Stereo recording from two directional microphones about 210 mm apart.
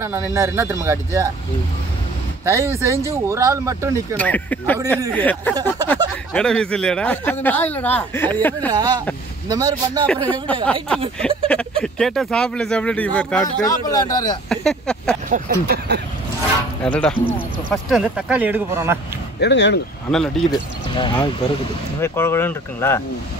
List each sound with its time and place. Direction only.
0.0 s speech: 15° right (ahead or behind)
2.4 s speech: 15° right (ahead or behind)
4.2 s speech: 10° left (ahead or behind)
8.7 s speech: 20° right (ahead or behind)
10.0 s speech: 5° left (ahead or behind)
13.7 s speech: 15° left (ahead or behind)
14.5 s speech: 5° left (ahead or behind)
15.2 s speech: 40° right (ahead or behind)
16.8 s speech: 5° left (ahead or behind)
19.4 s speech: 55° left (ahead or behind)
20.9 s speech: 20° left (ahead or behind)